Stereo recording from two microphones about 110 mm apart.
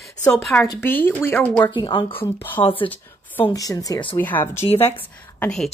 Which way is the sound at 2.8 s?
15° left (ahead or behind).